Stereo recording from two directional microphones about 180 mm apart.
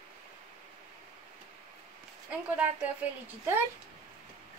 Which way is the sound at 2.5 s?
10° right (ahead or behind).